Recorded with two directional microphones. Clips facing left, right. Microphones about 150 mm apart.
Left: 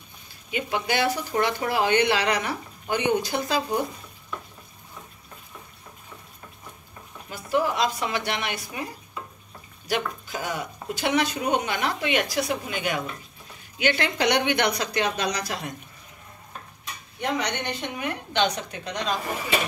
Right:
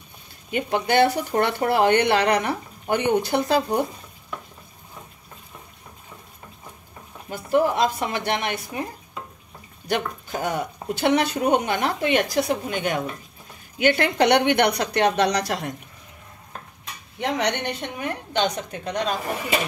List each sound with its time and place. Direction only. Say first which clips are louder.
0.5 s speech: right 4 dB; 50° right (ahead or behind)
7.2 s a woman's voice: right 4 dB; 50° right (ahead or behind)
9.8 s a woman's voice: right 2 dB; 50° right (ahead or behind); by 15.6 s 75° right (ahead or behind)
17.2 s a woman's voice: right 3 dB; 75° right (ahead or behind)
18.0 s a woman's voice: right 1 dB; 45° right (ahead or behind)